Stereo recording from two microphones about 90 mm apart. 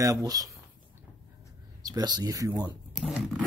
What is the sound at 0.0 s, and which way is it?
Speech, 40° right (ahead or behind).